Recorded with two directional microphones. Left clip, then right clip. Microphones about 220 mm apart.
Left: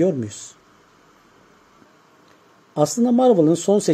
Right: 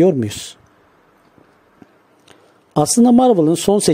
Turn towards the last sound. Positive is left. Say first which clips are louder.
# right 3 dB
turn(degrees=-35)  # may be behind; listen again after turning